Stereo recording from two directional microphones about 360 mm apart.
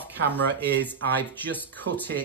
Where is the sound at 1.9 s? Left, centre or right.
Right.